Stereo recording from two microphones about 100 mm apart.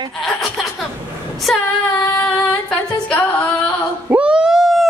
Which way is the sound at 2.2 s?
10° left (ahead or behind).